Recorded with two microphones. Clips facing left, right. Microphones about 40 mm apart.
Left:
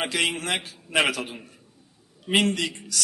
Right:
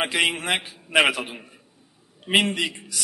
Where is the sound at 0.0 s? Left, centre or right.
Centre.